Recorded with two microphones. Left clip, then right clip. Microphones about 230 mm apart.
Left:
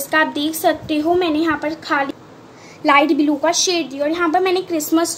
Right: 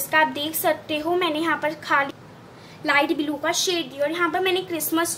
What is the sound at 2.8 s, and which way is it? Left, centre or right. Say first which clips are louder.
A woman's voice: left 7 dB; left.